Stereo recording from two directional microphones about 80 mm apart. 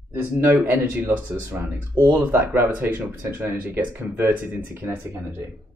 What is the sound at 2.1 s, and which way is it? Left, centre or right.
Speech, right.